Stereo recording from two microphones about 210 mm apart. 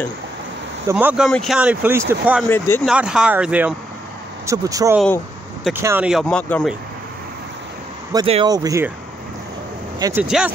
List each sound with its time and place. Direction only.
0.8 s speech: 10° right (ahead or behind)
6.2 s speech: 5° left (ahead or behind)
8.1 s speech: 20° right (ahead or behind)
9.9 s speech: 15° right (ahead or behind)
10.2 s speech: 5° right (ahead or behind)